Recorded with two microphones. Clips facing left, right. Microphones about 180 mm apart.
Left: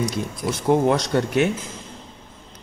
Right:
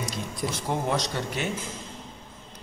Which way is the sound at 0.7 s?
60° left (ahead or behind).